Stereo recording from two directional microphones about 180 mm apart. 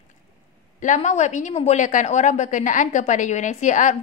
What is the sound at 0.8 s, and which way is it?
A woman's voice, 45° left (ahead or behind).